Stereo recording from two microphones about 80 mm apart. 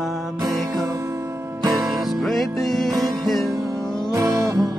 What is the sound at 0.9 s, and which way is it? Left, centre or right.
Music, right.